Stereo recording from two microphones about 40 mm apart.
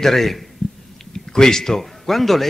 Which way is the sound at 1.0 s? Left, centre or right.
Centre.